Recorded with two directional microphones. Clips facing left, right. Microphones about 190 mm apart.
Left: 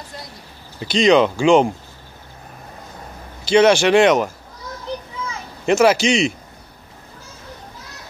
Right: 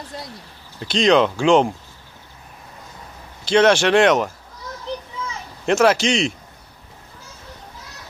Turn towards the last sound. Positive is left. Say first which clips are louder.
# left 2 dB
turn(degrees=5)  # may be behind; listen again after turning